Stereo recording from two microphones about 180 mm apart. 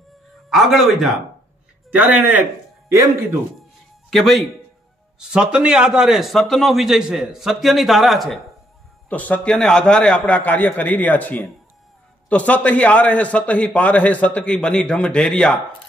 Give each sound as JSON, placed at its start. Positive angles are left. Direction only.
{"t": 0.5, "sound": "a man's voice", "side_deg": 0}
{"t": 4.1, "sound": "a man's voice", "side_deg": 0}